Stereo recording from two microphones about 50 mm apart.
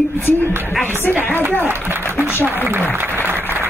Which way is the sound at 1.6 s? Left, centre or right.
Right.